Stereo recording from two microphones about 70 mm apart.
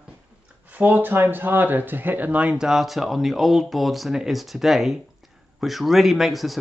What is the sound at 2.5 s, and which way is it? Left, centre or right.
Speech, centre.